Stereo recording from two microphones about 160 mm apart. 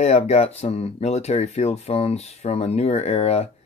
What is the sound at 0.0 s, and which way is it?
Speech, 40° left (ahead or behind).